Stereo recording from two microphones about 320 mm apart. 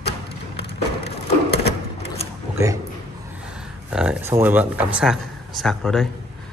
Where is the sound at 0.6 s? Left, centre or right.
Left.